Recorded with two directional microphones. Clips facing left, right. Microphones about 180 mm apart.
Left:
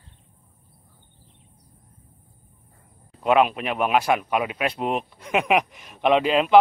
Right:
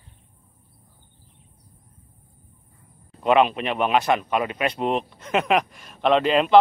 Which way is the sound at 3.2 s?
5° left (ahead or behind).